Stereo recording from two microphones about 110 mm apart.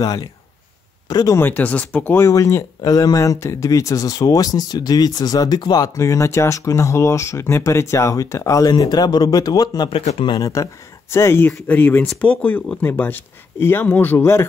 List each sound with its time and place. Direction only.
1.0 s speech: 40° left (ahead or behind)
1.3 s speech: 15° left (ahead or behind)
2.2 s speech: 30° left (ahead or behind)
9.8 s speech: 60° left (ahead or behind)
10.4 s speech: 30° left (ahead or behind)